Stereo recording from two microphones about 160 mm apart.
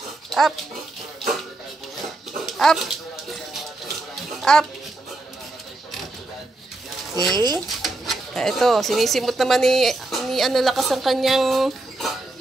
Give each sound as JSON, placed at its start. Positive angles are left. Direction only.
{"t": 0.3, "sound": "dog", "side_deg": 0}
{"t": 2.4, "sound": "dog", "side_deg": 0}
{"t": 4.4, "sound": "a sound", "side_deg": 5}
{"t": 7.2, "sound": "speech", "side_deg": -25}
{"t": 7.8, "sound": "speech", "side_deg": 0}